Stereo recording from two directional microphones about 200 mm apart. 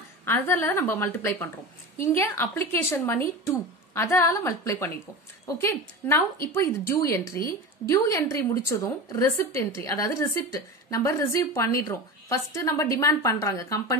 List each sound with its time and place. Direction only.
0.2 s a woman's voice: 10° left (ahead or behind)